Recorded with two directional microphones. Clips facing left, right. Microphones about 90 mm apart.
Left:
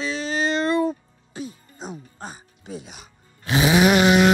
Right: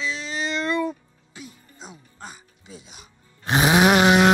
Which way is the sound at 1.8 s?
50° left (ahead or behind).